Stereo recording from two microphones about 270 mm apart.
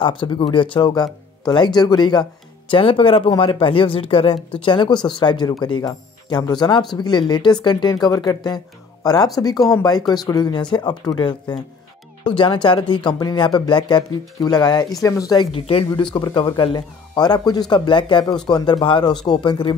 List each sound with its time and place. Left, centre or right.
0.0 s speech: centre
9.6 s speech: centre
9.8 s speech: centre